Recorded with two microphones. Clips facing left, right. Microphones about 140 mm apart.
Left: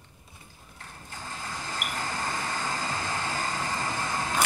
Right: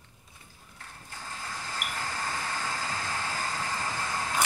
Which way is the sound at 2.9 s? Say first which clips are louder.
Left 2 dB; 25° left (ahead or behind).